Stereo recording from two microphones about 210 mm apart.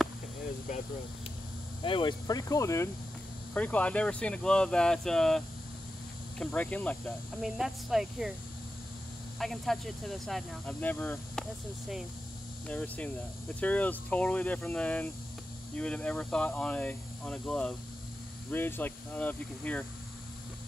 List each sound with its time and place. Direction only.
1.8 s speech: 25° left (ahead or behind); by 8.3 s centre (ahead or behind)
9.4 s speech: centre (ahead or behind)
12.6 s speech: 5° left (ahead or behind)